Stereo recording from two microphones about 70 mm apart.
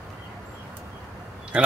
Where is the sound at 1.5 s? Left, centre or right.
Centre.